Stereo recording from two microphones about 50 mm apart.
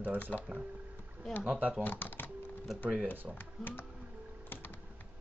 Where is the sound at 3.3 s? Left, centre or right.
Left.